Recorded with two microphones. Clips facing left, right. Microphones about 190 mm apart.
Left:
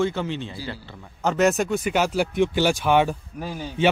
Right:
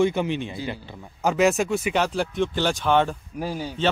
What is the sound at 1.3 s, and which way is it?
Speech, centre (ahead or behind).